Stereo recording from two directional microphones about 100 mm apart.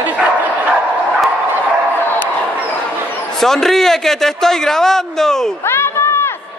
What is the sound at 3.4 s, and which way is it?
A man's voice, 5° left (ahead or behind).